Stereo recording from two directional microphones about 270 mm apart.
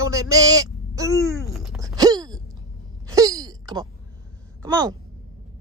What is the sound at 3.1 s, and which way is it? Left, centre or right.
Sigh, centre.